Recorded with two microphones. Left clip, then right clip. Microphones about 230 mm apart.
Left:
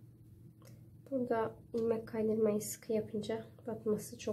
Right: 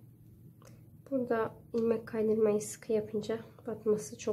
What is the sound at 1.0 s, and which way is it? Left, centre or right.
A woman's voice, centre.